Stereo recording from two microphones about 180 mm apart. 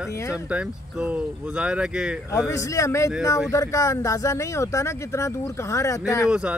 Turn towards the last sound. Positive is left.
turn(degrees=-5)  # may be behind; listen again after turning